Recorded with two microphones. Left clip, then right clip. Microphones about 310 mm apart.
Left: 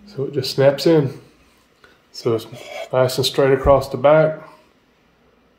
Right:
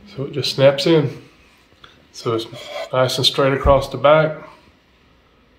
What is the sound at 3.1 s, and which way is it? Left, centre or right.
Speech, left.